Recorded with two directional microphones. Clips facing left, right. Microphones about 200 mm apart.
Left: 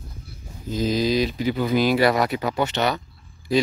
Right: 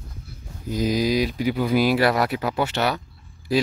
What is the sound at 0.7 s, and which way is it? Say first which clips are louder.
Speech: even; 15° right (ahead or behind).